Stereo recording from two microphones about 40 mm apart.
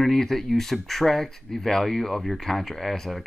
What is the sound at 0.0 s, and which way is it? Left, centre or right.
Speech, centre.